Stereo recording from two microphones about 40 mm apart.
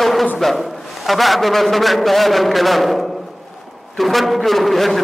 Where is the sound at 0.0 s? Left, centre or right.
Centre.